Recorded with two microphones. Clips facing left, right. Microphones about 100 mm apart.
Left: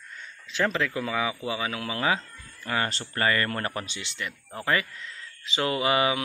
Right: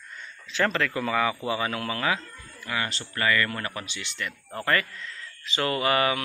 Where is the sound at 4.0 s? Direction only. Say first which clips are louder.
Right 1 dB; 15° left (ahead or behind).